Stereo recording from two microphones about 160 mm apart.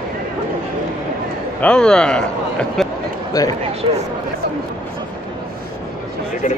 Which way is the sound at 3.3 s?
25° left (ahead or behind).